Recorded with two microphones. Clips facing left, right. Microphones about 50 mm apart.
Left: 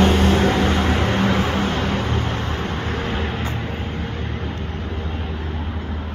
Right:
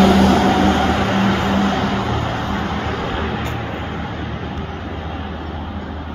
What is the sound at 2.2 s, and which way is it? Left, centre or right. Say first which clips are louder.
Vehicle: right 3 dB; right.